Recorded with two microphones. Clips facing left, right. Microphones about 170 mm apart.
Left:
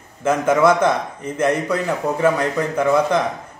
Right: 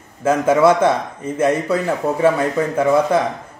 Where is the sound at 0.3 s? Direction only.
5° right (ahead or behind).